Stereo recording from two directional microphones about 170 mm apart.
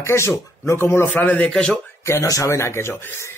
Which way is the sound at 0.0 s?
15° left (ahead or behind).